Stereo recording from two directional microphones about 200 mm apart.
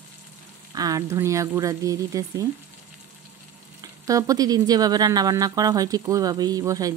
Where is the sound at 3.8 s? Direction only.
15° right (ahead or behind).